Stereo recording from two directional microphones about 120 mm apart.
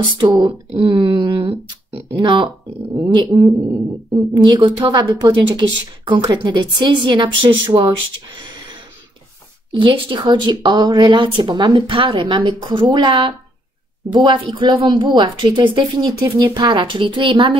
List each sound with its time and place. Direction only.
0.2 s speech: 40° right (ahead or behind)
2.1 s speech: 40° right (ahead or behind)
9.7 s speech: 40° right (ahead or behind)